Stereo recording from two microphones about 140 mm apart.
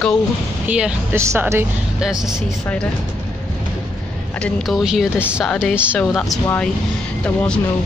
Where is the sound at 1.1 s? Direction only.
20° right (ahead or behind).